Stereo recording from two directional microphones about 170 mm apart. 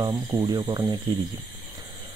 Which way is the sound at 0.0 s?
20° right (ahead or behind).